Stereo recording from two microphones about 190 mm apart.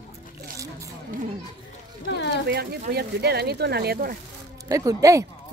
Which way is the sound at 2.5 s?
55° right (ahead or behind).